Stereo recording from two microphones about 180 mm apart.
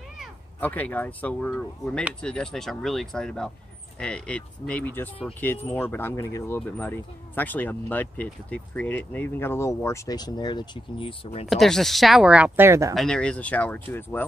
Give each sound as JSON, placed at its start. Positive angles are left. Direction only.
{"t": 0.6, "sound": "speech", "side_deg": 10}
{"t": 11.4, "sound": "speech", "side_deg": 0}
{"t": 12.9, "sound": "speech", "side_deg": 5}